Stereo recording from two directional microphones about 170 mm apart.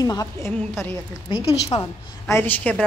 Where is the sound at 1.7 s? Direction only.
15° left (ahead or behind).